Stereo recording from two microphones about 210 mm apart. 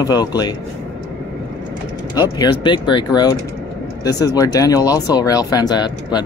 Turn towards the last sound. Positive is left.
turn(degrees=20)  # may be behind; listen again after turning